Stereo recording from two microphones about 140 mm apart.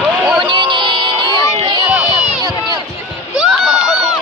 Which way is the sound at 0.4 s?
35° right (ahead or behind).